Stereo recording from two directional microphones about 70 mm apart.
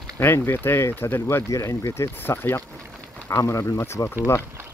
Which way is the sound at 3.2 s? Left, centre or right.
Left.